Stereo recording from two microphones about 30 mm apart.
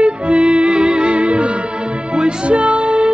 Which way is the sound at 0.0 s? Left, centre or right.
Right.